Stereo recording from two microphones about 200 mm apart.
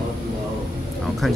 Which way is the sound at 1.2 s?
Centre (ahead or behind).